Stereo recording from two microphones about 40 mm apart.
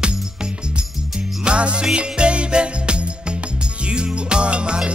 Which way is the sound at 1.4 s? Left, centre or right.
Right.